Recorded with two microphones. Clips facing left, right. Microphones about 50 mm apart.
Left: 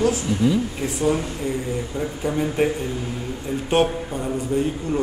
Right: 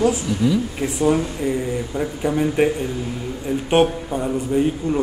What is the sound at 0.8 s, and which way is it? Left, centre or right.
A man's voice, centre.